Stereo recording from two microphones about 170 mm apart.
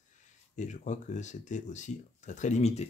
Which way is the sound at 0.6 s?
45° left (ahead or behind).